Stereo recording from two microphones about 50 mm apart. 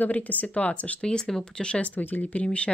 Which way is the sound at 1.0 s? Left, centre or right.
Centre.